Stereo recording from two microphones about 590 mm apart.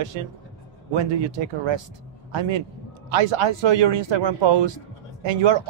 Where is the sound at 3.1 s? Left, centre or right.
Right.